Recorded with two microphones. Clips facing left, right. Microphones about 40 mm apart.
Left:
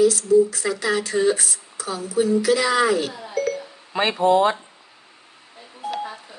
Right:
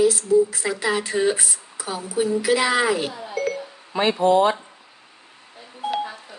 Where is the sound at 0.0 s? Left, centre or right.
Right.